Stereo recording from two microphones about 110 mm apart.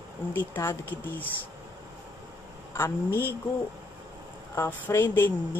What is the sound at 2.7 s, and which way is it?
Speech, 25° left (ahead or behind).